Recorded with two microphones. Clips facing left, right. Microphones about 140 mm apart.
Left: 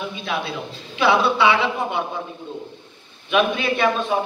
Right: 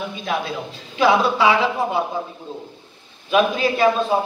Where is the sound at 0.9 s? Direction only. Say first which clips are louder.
Right 1 dB; 40° right (ahead or behind).